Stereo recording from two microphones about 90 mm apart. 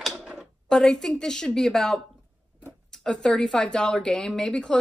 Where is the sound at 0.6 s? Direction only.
5° left (ahead or behind).